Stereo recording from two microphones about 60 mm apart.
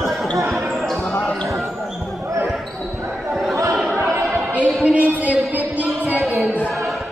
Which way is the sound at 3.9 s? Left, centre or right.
Right.